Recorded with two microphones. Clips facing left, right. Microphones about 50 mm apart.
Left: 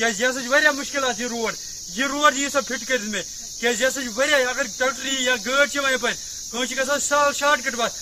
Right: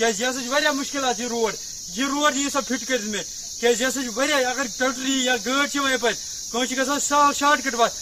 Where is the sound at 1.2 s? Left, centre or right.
Centre.